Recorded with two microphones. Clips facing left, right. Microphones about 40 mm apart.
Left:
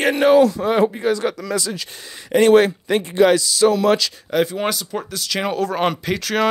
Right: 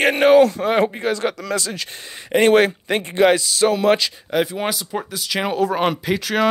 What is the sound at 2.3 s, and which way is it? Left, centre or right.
Speech, right.